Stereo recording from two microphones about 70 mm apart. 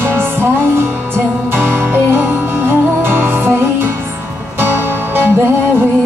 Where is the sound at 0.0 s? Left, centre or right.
Right.